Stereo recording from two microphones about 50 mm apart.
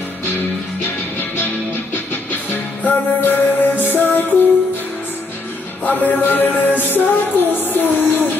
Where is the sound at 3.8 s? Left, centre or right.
Left.